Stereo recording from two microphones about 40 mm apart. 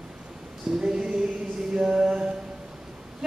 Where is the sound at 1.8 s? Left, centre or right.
Centre.